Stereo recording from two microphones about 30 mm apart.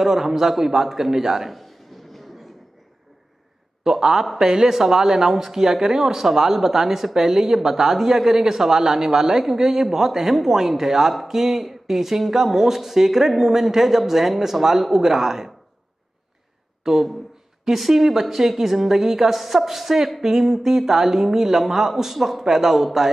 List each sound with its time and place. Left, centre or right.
0.0 s speech: centre
1.5 s a sound: centre
3.8 s speech: centre
16.8 s speech: centre